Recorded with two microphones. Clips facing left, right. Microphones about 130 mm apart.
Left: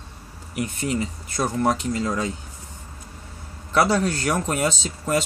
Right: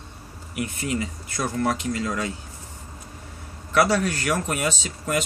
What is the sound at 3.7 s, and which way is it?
Speech, 25° left (ahead or behind).